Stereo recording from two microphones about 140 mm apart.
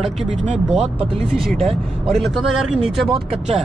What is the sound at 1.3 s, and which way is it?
Speech, centre (ahead or behind).